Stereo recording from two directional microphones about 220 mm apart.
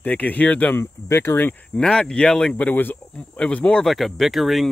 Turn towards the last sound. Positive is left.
turn(degrees=0)  # may be behind; listen again after turning